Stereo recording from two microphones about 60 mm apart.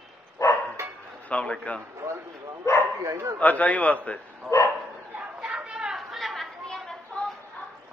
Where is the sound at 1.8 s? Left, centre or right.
Right.